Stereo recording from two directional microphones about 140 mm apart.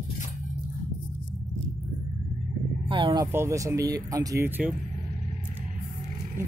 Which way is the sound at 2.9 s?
35° right (ahead or behind).